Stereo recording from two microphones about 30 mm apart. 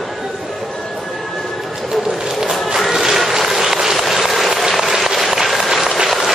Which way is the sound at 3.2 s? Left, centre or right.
Centre.